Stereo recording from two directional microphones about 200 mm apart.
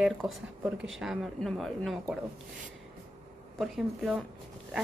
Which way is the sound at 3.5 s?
Centre (ahead or behind).